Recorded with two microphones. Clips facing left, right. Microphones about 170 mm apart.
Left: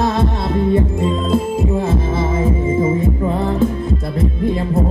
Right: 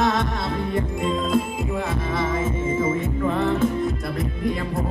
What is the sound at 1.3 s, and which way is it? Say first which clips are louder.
Music: left 6 dB; 25° left (ahead or behind).